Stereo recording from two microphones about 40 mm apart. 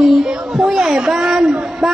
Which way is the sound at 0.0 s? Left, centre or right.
Centre.